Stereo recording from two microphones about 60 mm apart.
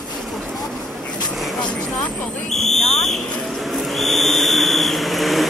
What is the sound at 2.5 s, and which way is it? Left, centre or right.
Speech, centre.